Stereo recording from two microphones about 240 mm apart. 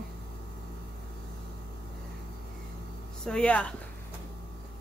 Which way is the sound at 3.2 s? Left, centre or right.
Centre.